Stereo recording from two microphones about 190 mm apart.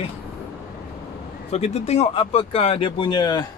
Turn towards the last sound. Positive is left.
turn(degrees=20)  # may be behind; listen again after turning